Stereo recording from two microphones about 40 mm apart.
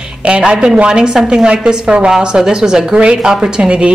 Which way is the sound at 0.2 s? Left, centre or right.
Right.